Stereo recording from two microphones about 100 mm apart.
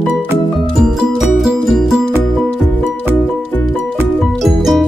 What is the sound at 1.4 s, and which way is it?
Music, 5° right (ahead or behind).